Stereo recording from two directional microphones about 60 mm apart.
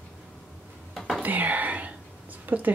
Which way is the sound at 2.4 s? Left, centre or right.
Right.